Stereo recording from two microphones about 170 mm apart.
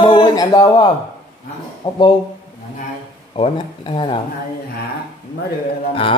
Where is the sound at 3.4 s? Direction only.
30° left (ahead or behind).